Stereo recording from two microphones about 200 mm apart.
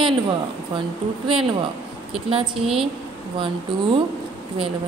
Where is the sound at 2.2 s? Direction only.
30° right (ahead or behind).